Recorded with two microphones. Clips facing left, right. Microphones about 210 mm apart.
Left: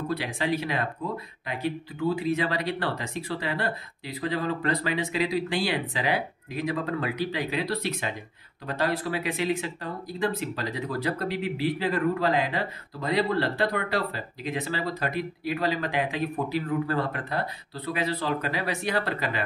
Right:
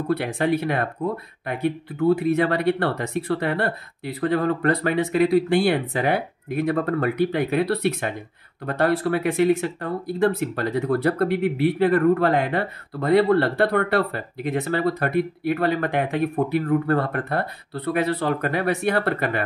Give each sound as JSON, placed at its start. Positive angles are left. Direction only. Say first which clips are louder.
{"t": 0.1, "sound": "speech", "louder": "right 8 dB", "side_deg": -55}